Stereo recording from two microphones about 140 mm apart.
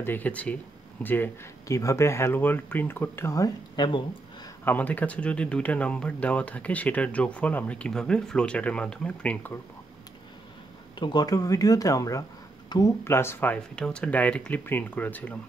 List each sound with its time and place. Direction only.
0.0 s speech: 15° left (ahead or behind); by 4.0 s 30° left (ahead or behind)
4.6 s speech: 10° left (ahead or behind)
11.0 s speech: 30° left (ahead or behind); by 15.3 s 10° left (ahead or behind)